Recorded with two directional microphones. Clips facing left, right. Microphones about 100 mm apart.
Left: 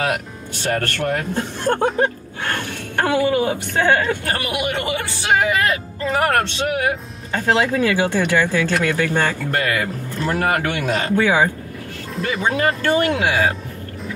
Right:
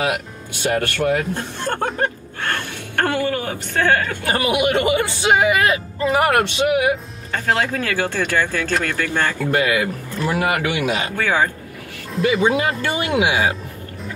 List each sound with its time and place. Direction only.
0.0 s speech: 10° right (ahead or behind)
1.3 s speech: 10° left (ahead or behind)
3.0 s speech: 15° left (ahead or behind)
4.3 s speech: 15° right (ahead or behind)
7.4 s speech: 15° left (ahead or behind)
9.5 s speech: 10° right (ahead or behind)
11.1 s speech: 15° left (ahead or behind)
12.2 s speech: centre (ahead or behind)